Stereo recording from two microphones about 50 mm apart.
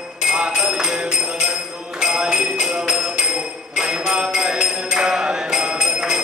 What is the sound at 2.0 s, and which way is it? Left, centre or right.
Music, centre.